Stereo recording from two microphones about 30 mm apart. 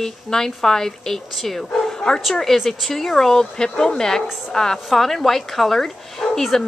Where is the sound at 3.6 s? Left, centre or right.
Left.